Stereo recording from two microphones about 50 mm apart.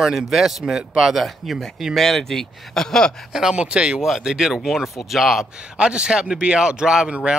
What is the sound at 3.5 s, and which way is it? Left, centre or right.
Speech, right.